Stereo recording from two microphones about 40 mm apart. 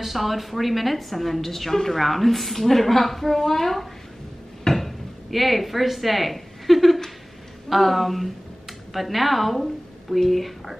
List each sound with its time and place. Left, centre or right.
0.0 s a woman's voice: centre
4.6 s a sound: centre
7.7 s a woman's voice: centre